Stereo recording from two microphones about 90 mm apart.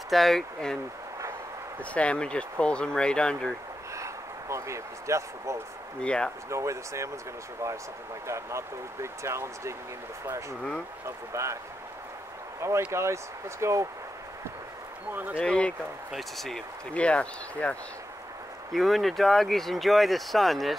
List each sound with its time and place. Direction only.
0.1 s speech: centre (ahead or behind)
1.8 s speech: 15° left (ahead or behind)
3.9 s speech: 35° right (ahead or behind)
5.9 s speech: 10° left (ahead or behind)
6.5 s speech: 35° right (ahead or behind)
8.3 s speech: 30° right (ahead or behind)
11.1 s speech: 35° right (ahead or behind)
12.9 s speech: 30° right (ahead or behind)
15.3 s speech: 10° left (ahead or behind)
16.1 s speech: centre (ahead or behind)
18.7 s speech: centre (ahead or behind)